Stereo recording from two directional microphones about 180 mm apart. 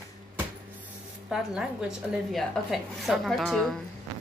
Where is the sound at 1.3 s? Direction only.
5° right (ahead or behind).